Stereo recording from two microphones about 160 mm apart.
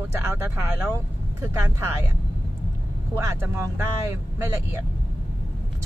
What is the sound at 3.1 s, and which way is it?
Speech, 15° right (ahead or behind).